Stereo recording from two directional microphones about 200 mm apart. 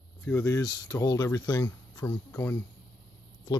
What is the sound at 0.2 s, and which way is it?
Speech, 15° left (ahead or behind).